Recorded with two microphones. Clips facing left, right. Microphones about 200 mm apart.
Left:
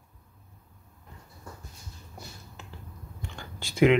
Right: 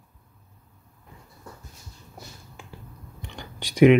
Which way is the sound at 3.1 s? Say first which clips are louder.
Right 2 dB; 20° right (ahead or behind).